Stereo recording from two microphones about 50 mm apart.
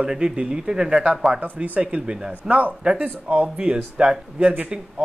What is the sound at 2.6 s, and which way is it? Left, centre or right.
Speech, right.